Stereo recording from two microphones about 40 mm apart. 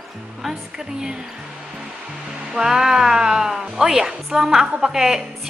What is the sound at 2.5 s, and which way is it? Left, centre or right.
Speech, centre.